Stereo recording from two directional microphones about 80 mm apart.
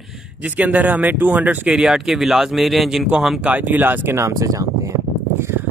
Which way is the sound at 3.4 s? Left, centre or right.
Right.